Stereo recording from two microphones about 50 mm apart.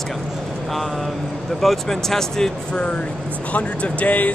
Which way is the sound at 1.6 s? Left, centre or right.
Centre.